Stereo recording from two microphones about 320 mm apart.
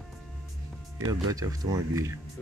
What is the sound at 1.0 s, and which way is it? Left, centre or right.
Speech, centre.